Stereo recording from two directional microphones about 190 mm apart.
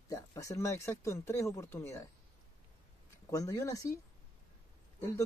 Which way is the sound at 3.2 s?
15° left (ahead or behind).